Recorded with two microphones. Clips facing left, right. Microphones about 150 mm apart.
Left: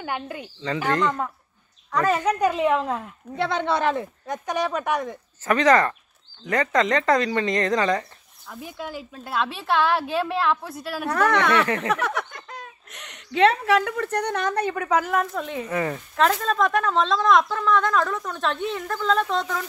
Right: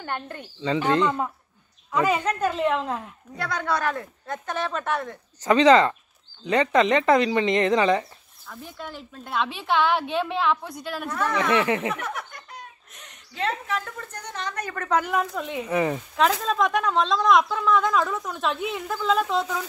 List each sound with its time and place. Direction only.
0.0 s speech: 5° left (ahead or behind)
1.0 s speech: 10° right (ahead or behind)
2.2 s speech: 10° left (ahead or behind)
3.3 s speech: 25° left (ahead or behind)
5.4 s speech: 15° right (ahead or behind)
8.5 s speech: 10° left (ahead or behind)
11.1 s speech: 75° left (ahead or behind)
11.5 s speech: 20° right (ahead or behind)
11.9 s a woman's voice: 90° left; by 14.5 s 60° left (ahead or behind)
14.7 s speech: 10° left (ahead or behind)
15.7 s speech: 15° right (ahead or behind)
16.2 s speech: centre (ahead or behind)